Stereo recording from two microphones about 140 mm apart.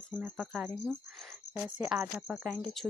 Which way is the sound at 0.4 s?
5° left (ahead or behind).